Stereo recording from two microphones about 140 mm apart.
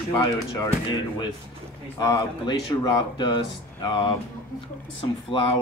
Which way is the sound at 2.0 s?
25° left (ahead or behind).